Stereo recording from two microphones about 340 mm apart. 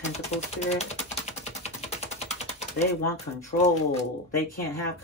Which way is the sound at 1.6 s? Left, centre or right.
Centre.